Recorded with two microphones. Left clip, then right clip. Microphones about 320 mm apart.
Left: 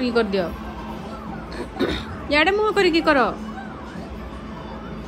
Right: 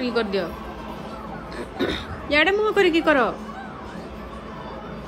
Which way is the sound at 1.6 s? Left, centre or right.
Centre.